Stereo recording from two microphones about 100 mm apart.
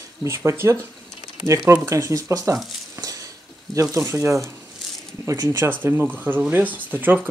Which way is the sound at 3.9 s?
30° right (ahead or behind).